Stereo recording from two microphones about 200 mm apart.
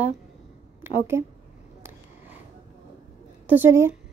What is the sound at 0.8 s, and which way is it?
Speech, 10° right (ahead or behind).